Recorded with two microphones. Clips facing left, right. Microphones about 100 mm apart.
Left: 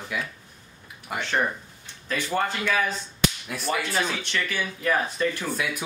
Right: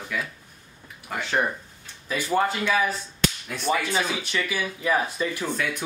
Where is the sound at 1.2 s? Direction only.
10° right (ahead or behind).